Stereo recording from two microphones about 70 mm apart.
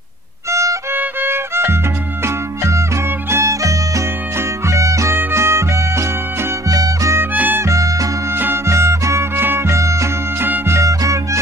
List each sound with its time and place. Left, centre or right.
0.5 s music: right
0.9 s violin: right
2.2 s music: right
6.7 s music: right
7.3 s music: right
7.6 s music: right
10.4 s music: right
10.8 s music: right